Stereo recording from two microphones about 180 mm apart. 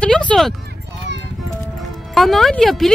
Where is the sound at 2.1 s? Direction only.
Centre (ahead or behind).